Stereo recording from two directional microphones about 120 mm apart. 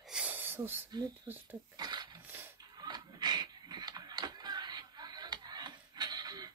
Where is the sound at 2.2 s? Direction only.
15° right (ahead or behind).